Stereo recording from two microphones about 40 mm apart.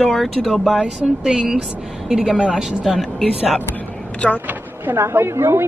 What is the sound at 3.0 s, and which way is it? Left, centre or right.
Speech, centre.